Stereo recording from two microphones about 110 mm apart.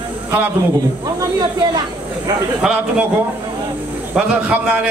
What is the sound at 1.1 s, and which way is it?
Speech, 35° right (ahead or behind).